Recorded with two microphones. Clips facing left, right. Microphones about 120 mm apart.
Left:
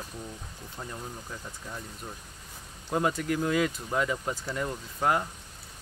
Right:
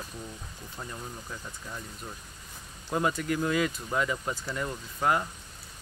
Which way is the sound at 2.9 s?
5° left (ahead or behind).